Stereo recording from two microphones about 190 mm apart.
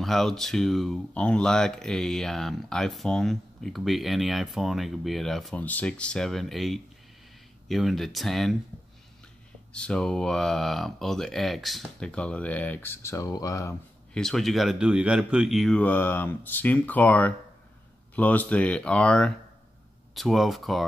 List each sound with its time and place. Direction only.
0.0 s speech: centre (ahead or behind)
9.7 s speech: 5° left (ahead or behind)
14.1 s speech: centre (ahead or behind)